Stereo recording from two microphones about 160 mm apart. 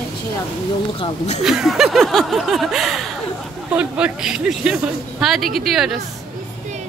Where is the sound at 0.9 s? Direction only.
45° left (ahead or behind).